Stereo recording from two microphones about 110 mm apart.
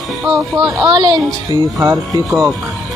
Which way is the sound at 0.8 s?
40° right (ahead or behind).